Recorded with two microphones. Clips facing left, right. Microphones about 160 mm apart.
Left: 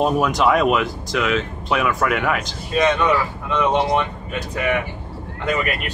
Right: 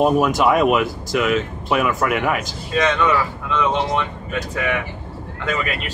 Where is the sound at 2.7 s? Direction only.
15° left (ahead or behind).